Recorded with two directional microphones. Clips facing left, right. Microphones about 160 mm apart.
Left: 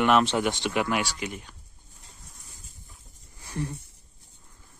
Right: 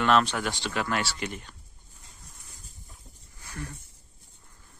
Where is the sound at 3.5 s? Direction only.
25° left (ahead or behind).